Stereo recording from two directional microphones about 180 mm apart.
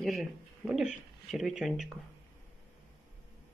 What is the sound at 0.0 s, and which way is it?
Speech, centre (ahead or behind).